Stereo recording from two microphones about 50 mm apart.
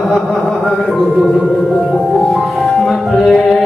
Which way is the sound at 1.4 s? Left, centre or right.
Centre.